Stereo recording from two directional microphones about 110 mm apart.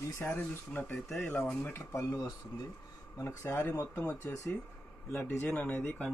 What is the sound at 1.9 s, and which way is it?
Speech, 30° left (ahead or behind).